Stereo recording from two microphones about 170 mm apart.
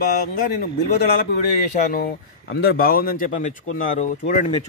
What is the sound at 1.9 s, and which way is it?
Speech, 65° left (ahead or behind).